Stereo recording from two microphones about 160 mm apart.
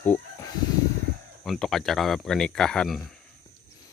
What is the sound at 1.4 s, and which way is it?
Speech, centre (ahead or behind).